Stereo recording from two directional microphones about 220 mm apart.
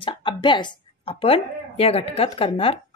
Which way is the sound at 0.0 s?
20° left (ahead or behind).